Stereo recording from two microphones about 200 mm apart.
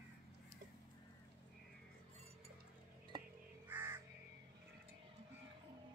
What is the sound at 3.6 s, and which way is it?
Crow, 10° right (ahead or behind).